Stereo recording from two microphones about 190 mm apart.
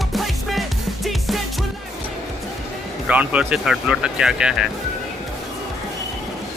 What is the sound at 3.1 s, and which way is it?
Speech, 10° right (ahead or behind).